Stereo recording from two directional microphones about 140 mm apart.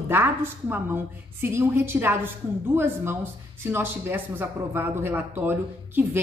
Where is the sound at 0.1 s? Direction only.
15° right (ahead or behind).